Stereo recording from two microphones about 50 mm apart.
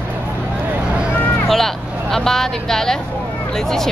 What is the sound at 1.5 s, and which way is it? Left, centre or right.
Vehicle, centre.